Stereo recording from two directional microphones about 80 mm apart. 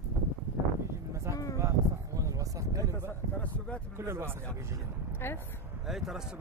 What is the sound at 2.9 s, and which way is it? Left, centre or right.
Speech, left.